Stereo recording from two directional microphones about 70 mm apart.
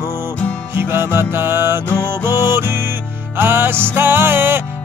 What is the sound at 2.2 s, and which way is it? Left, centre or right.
Music, right.